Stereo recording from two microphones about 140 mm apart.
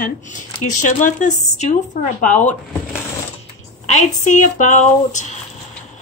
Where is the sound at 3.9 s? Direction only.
60° left (ahead or behind).